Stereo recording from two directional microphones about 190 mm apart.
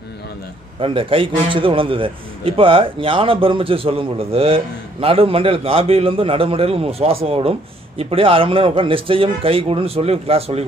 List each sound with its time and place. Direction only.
0.7 s a man's voice: 25° right (ahead or behind)